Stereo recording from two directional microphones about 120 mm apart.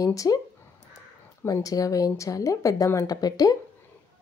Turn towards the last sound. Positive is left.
turn(degrees=30)  # may be behind; listen again after turning